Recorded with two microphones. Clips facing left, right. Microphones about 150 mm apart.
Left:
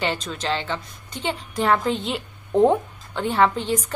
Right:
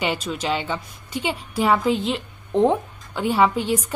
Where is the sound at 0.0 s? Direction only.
10° right (ahead or behind).